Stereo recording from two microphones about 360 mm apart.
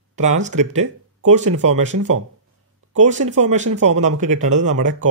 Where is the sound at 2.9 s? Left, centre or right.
Centre.